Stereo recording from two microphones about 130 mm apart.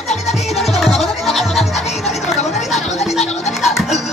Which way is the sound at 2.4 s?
60° left (ahead or behind).